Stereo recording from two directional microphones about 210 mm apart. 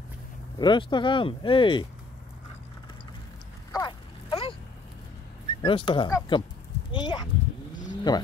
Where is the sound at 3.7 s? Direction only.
20° left (ahead or behind).